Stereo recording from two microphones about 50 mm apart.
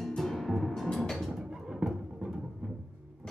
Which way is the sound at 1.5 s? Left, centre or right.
Centre.